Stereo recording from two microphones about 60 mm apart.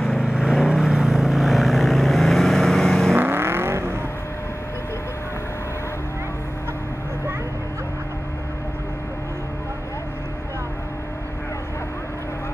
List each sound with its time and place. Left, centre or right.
0.2 s vehicle: centre
3.2 s vehicle: right